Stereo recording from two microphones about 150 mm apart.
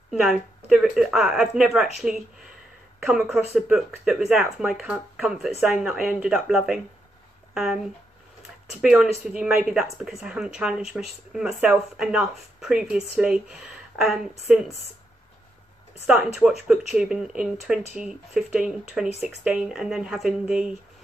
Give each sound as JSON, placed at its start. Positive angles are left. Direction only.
{"t": 0.1, "sound": "speech", "side_deg": -5}
{"t": 8.8, "sound": "speech", "side_deg": -5}
{"t": 16.6, "sound": "speech", "side_deg": -5}